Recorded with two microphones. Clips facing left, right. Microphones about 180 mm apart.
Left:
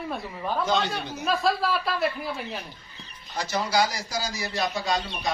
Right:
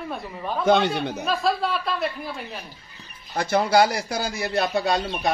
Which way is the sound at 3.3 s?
60° right (ahead or behind).